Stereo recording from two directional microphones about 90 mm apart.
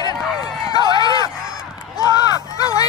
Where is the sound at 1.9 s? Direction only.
45° left (ahead or behind).